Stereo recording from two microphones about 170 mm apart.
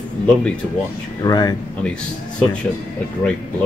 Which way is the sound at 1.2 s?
20° left (ahead or behind).